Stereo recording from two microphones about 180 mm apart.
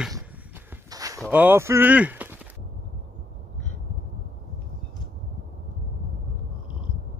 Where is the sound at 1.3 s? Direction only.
10° right (ahead or behind).